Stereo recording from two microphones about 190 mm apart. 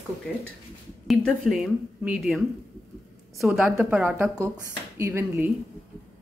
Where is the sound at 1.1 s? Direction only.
Centre (ahead or behind).